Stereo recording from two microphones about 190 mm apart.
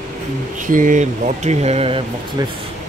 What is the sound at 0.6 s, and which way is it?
Speech, 45° right (ahead or behind).